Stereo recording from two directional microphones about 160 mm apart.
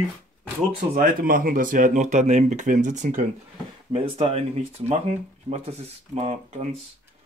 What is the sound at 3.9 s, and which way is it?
Speech, 35° right (ahead or behind).